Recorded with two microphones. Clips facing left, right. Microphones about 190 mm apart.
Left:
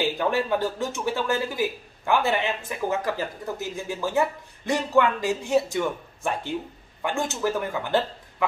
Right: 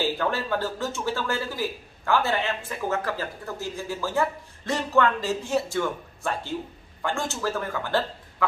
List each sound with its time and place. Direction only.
0.0 s speech: 15° left (ahead or behind)